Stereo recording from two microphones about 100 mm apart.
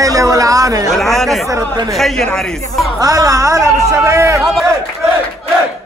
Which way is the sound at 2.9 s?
35° right (ahead or behind).